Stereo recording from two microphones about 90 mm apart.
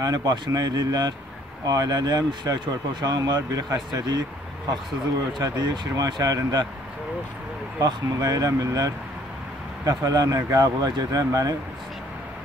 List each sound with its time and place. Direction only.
0.0 s speech: 45° right (ahead or behind)
5.4 s speech: 45° right (ahead or behind)
7.8 s speech: 40° right (ahead or behind)